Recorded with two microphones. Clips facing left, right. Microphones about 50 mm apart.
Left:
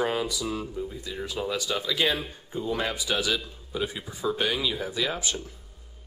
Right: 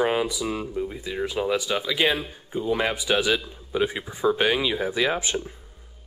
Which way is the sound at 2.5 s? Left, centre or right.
Right.